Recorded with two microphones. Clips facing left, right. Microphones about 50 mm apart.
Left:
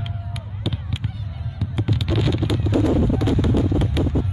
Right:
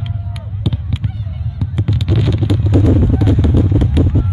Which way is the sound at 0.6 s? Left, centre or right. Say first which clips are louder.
Right 6 dB; centre.